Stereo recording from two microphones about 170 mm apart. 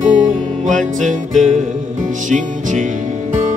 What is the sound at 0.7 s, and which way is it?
Music, 50° right (ahead or behind).